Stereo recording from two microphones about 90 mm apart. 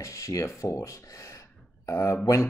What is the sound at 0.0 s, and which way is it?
Speech, 35° left (ahead or behind).